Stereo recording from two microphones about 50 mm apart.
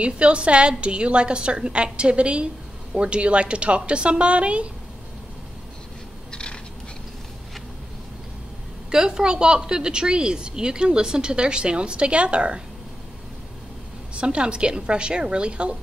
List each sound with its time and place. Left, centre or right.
0.0 s a woman's voice: right
6.3 s a sound: centre
8.9 s a woman's voice: centre
14.1 s a woman's voice: right